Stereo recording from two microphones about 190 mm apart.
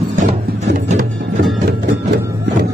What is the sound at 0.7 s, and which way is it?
Music, 40° right (ahead or behind).